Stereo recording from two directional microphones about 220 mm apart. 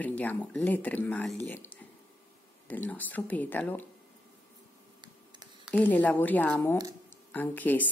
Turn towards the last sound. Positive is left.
turn(degrees=10)  # may be behind; listen again after turning